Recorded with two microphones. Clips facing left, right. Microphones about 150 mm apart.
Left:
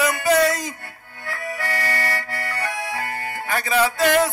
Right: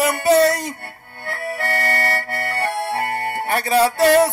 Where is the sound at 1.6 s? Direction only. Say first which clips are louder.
Right 4 dB; 60° right (ahead or behind).